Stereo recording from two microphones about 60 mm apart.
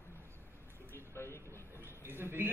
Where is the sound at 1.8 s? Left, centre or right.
Right.